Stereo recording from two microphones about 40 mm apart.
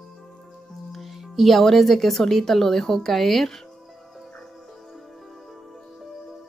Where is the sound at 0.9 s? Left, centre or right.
Centre.